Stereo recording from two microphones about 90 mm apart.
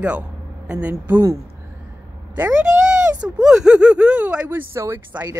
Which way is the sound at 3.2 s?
5° right (ahead or behind).